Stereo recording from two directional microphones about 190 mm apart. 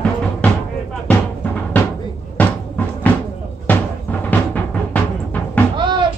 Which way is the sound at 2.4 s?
5° left (ahead or behind).